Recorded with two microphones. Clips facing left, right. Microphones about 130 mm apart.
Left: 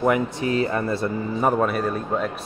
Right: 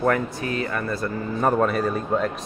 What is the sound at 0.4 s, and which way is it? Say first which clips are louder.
Speech: left 4 dB; 25° left (ahead or behind).